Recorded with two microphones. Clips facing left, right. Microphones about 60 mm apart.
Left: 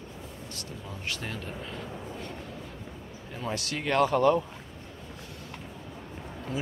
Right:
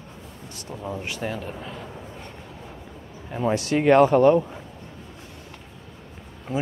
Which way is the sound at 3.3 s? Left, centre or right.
Right.